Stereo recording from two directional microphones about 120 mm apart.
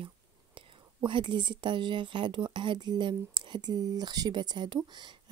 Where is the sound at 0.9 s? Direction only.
40° right (ahead or behind).